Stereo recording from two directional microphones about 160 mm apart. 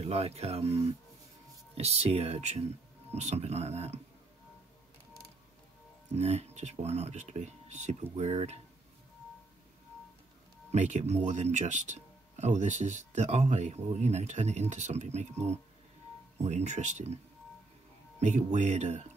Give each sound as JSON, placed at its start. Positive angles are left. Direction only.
{"t": 0.0, "sound": "speech", "side_deg": -40}
{"t": 6.1, "sound": "speech", "side_deg": -45}
{"t": 10.7, "sound": "speech", "side_deg": -45}
{"t": 18.2, "sound": "speech", "side_deg": -45}